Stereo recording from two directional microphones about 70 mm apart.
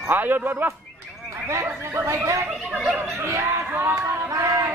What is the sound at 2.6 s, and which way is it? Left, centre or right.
Speech, centre.